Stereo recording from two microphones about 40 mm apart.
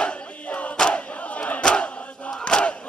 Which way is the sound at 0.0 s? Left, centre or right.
Left.